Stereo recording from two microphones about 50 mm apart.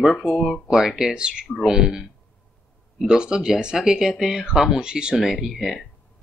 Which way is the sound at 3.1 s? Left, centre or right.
Centre.